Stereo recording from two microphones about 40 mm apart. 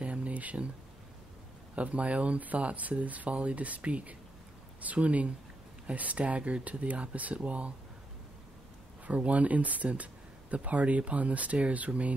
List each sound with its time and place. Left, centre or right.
0.0 s a sound: right
1.8 s speech: right
9.0 s speech: right